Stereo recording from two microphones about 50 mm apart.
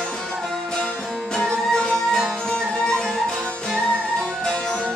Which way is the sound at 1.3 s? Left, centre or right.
Centre.